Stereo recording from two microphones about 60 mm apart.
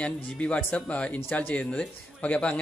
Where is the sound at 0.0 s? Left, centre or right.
Left.